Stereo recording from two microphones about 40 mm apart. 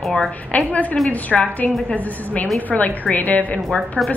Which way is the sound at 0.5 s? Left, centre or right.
Left.